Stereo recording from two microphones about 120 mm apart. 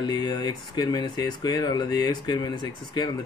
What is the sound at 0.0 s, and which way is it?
Speech, 35° left (ahead or behind).